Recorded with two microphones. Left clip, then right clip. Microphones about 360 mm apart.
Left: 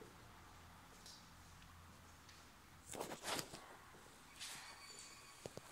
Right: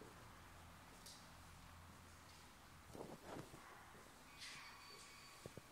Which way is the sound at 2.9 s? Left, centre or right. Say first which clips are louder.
Left 9 dB; left.